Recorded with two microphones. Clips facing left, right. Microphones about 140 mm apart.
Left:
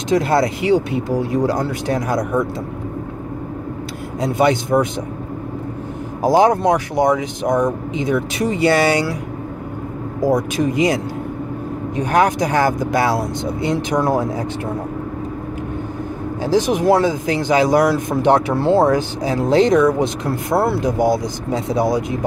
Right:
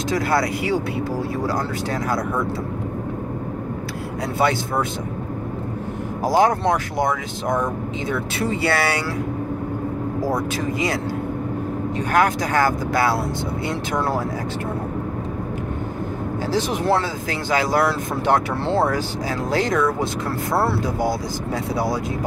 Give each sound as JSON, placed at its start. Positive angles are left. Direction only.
{"t": 0.1, "sound": "speech", "side_deg": 20}
{"t": 4.2, "sound": "speech", "side_deg": 20}
{"t": 6.2, "sound": "speech", "side_deg": 20}
{"t": 10.2, "sound": "speech", "side_deg": 15}
{"t": 12.0, "sound": "speech", "side_deg": 20}
{"t": 16.4, "sound": "speech", "side_deg": 15}